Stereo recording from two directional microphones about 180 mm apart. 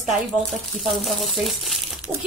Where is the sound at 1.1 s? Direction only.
Centre (ahead or behind).